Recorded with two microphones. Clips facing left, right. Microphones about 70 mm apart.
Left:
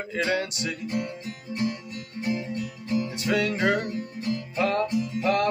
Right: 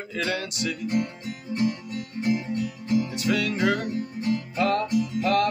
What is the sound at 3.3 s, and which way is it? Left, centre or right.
Music, left.